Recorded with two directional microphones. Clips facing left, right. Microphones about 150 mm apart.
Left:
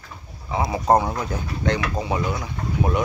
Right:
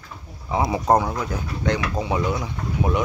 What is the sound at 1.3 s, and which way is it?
Speech, 10° right (ahead or behind).